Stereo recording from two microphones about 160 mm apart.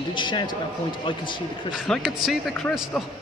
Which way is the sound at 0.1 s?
30° left (ahead or behind).